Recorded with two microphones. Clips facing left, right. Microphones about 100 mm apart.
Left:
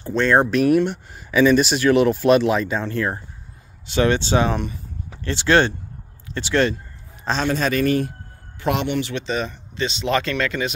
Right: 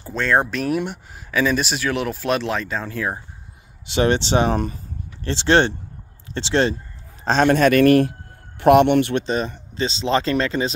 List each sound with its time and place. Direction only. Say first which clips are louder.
0.0 s speech: left 3 dB; centre (ahead or behind)
3.8 s speech: even; 25° right (ahead or behind); by 4.8 s 40° right (ahead or behind)
5.2 s speech: even; 30° right (ahead or behind)
7.2 s a man's voice: right 6 dB; 55° right (ahead or behind); by 8.1 s 70° right (ahead or behind)
8.5 s speech: right 9 dB; 60° right (ahead or behind); by 10.7 s 30° right (ahead or behind)